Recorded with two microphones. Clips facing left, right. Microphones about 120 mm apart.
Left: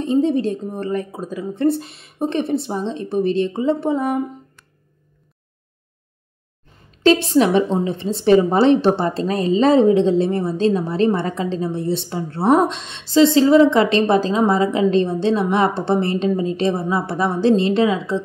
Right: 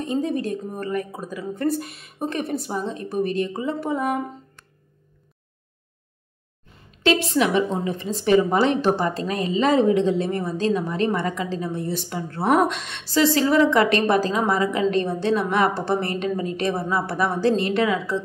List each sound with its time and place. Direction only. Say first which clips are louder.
0.0 s a woman's voice: left 7 dB; 30° left (ahead or behind)
7.0 s a woman's voice: left 5 dB; 35° left (ahead or behind)